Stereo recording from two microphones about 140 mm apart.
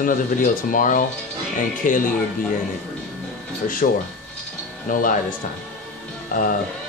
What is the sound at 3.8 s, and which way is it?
Speech, 70° left (ahead or behind).